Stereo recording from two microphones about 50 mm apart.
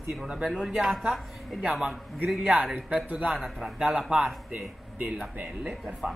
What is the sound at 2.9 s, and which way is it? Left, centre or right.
Speech, right.